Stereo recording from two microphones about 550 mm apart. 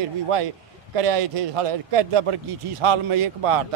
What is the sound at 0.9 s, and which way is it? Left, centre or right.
Speech, right.